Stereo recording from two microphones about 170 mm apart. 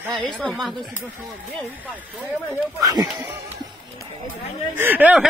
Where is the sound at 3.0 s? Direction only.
Centre (ahead or behind).